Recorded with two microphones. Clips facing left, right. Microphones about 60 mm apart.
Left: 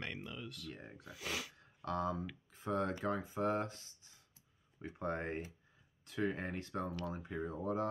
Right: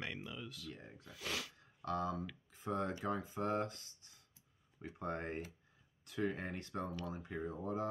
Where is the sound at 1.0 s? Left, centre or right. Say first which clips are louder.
Left 1 dB; centre.